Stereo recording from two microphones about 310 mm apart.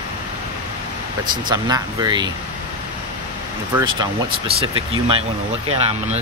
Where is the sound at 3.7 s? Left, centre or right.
Centre.